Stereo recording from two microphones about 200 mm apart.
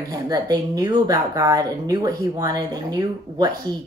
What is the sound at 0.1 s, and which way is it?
A woman's voice, 20° right (ahead or behind).